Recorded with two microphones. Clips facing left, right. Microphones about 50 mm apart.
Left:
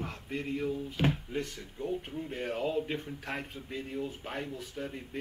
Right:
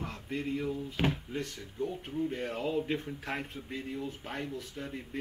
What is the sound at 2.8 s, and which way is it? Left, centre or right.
Speech, centre.